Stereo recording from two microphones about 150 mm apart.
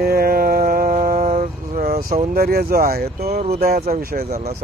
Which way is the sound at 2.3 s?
90° right.